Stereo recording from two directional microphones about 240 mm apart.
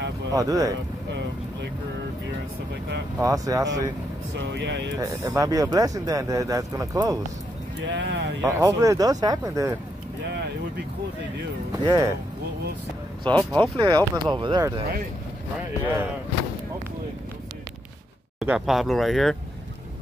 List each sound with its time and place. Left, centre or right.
0.3 s speech: centre
3.2 s speech: centre
4.4 s speech: right
4.9 s speech: centre
7.8 s speech: right
8.4 s speech: centre
11.7 s speech: centre
13.3 s speech: centre
13.7 s speech: centre
18.4 s speech: centre